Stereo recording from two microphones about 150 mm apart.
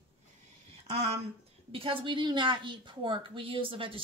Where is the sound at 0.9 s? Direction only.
45° right (ahead or behind).